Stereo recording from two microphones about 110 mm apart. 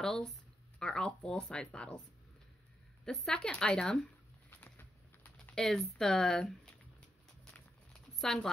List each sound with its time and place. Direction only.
0.0 s speech: 5° left (ahead or behind)
3.1 s speech: 5° left (ahead or behind)
4.5 s bird: 15° left (ahead or behind)
5.5 s speech: 5° left (ahead or behind)
8.2 s speech: 5° left (ahead or behind)